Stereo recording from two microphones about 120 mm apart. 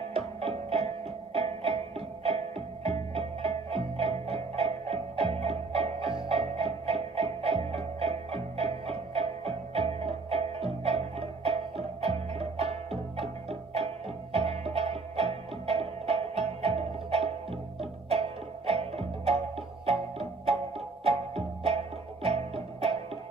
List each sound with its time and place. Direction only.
0.1 s music: 55° right (ahead or behind)